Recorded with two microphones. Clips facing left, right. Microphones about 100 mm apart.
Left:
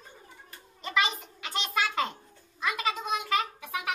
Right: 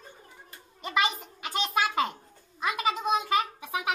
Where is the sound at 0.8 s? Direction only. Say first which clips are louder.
Right 1 dB; 15° right (ahead or behind).